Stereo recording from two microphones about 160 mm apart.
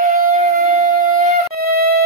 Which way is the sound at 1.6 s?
70° right (ahead or behind).